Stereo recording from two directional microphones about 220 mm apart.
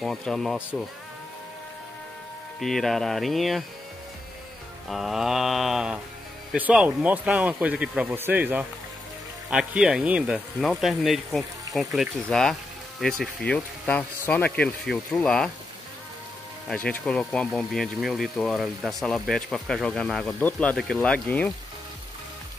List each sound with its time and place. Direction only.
0.0 s speech: centre (ahead or behind)
2.6 s speech: centre (ahead or behind)
4.8 s speech: centre (ahead or behind)
16.6 s speech: 5° left (ahead or behind)